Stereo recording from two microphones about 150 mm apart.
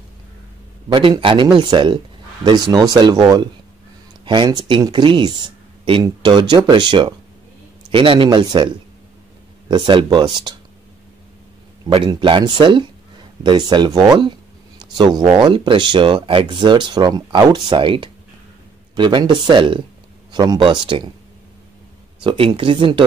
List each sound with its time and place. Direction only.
0.8 s speech: 35° right (ahead or behind)
11.9 s speech: 35° right (ahead or behind)
22.2 s speech: 35° right (ahead or behind)